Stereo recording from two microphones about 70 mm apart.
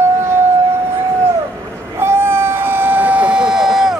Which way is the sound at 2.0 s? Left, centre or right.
Right.